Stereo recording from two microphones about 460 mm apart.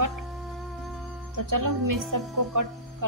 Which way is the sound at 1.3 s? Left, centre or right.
Right.